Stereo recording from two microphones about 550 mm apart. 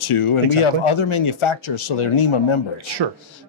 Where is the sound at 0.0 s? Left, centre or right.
Left.